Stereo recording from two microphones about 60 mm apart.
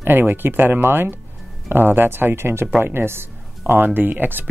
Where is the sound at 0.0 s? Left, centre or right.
Right.